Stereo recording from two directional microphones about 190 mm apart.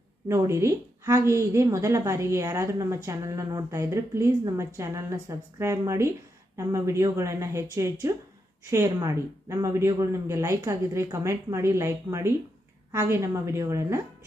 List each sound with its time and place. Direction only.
0.3 s a woman's voice: 15° right (ahead or behind)